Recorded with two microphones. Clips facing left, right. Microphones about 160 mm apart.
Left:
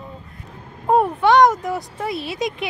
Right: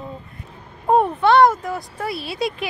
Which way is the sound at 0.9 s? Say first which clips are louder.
Even; 10° left (ahead or behind).